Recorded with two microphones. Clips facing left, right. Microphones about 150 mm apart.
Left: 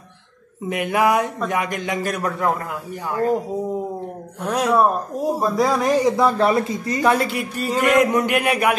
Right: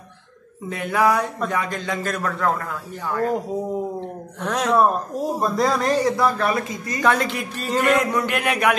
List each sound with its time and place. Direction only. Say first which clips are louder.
0.7 s speech: left 1 dB; 15° left (ahead or behind)
4.4 s speech: left 1 dB; 5° left (ahead or behind)
6.1 s speech: left 4 dB; 25° left (ahead or behind)
7.1 s speech: left 1 dB; 10° left (ahead or behind)